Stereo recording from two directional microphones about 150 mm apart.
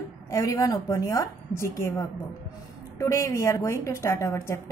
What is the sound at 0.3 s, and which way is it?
A woman's voice, 20° left (ahead or behind).